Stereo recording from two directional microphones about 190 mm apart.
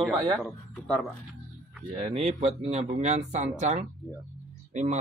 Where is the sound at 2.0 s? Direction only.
35° right (ahead or behind).